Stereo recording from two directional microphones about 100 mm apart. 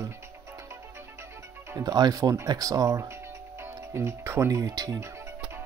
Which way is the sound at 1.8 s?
40° right (ahead or behind).